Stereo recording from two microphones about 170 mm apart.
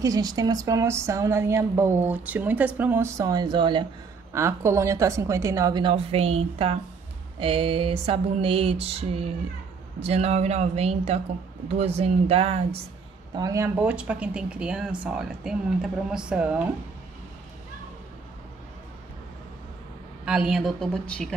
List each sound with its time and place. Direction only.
0.0 s speech: 20° right (ahead or behind)
4.3 s a woman's voice: 15° right (ahead or behind); by 6.8 s 35° right (ahead or behind)
7.3 s a sound: 30° right (ahead or behind)
13.3 s a woman's voice: 20° right (ahead or behind)
13.7 s speech: 5° right (ahead or behind)
20.2 s speech: 5° right (ahead or behind)